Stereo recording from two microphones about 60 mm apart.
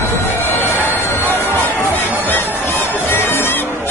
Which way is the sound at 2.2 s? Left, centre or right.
Left.